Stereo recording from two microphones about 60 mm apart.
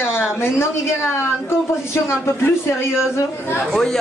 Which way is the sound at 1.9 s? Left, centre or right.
Left.